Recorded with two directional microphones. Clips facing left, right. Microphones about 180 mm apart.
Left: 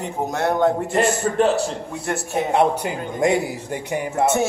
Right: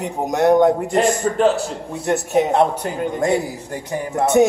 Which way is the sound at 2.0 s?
20° right (ahead or behind).